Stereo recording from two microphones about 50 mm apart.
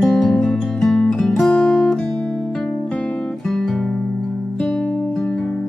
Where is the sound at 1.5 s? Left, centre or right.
Left.